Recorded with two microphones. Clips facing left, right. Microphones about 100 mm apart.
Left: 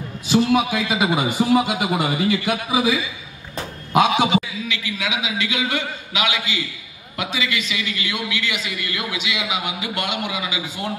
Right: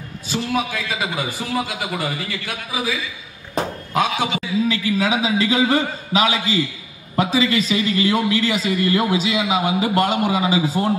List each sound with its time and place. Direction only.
0.3 s a man's voice: 15° left (ahead or behind)
4.6 s a man's voice: 40° right (ahead or behind)